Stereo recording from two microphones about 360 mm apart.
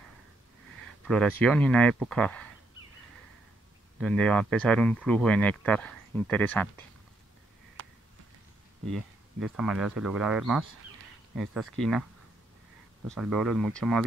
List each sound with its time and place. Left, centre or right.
1.0 s speech: centre
4.0 s speech: centre
7.8 s a sound: right
8.9 s speech: centre
11.8 s speech: centre
13.1 s speech: centre